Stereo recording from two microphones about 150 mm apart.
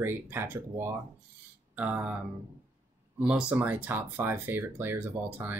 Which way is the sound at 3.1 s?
5° right (ahead or behind).